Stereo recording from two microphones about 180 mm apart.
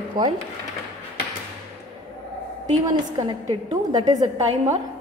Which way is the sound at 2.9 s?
20° right (ahead or behind).